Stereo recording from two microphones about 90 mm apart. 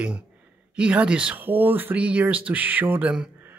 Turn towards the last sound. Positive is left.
turn(degrees=-15)  # may be behind; listen again after turning